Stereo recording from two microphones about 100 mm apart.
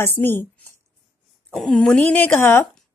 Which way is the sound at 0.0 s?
20° left (ahead or behind).